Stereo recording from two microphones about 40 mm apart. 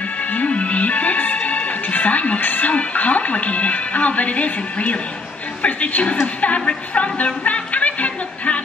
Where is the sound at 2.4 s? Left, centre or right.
Left.